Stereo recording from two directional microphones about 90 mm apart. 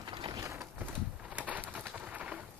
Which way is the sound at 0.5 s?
20° right (ahead or behind).